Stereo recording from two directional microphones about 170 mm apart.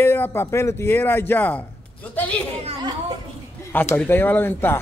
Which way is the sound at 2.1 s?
10° left (ahead or behind).